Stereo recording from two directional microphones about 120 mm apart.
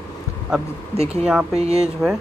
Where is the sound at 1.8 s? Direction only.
5° right (ahead or behind).